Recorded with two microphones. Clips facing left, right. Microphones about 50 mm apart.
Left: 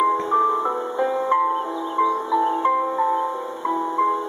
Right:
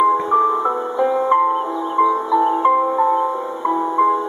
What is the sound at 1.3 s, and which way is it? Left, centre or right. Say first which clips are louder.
Music: right 4 dB; right.